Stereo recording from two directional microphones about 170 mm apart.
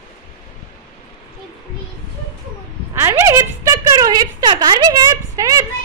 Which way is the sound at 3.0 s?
15° right (ahead or behind).